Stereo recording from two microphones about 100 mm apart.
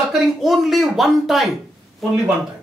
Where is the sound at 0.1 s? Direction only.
Centre (ahead or behind).